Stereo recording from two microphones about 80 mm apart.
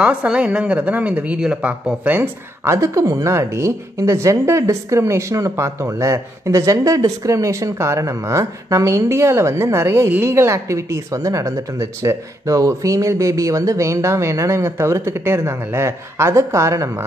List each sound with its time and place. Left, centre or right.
0.0 s speech: centre
2.6 s a woman's voice: right